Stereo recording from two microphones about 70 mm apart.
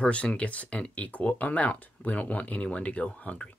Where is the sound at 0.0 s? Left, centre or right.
Centre.